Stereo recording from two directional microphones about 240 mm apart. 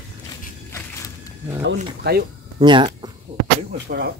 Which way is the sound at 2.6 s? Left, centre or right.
Centre.